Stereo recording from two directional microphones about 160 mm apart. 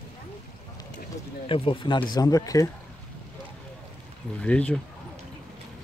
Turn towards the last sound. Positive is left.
turn(degrees=5)  # may be behind; listen again after turning